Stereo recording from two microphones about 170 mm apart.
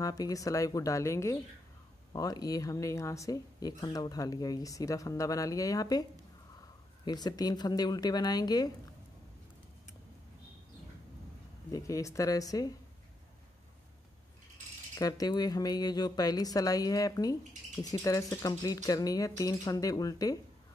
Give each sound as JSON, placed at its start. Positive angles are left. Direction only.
{"t": 0.0, "sound": "speech", "side_deg": 20}
{"t": 7.1, "sound": "speech", "side_deg": 25}
{"t": 11.7, "sound": "speech", "side_deg": 20}
{"t": 15.0, "sound": "speech", "side_deg": 20}